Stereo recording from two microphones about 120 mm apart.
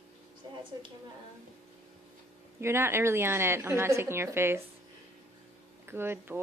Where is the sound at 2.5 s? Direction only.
20° right (ahead or behind).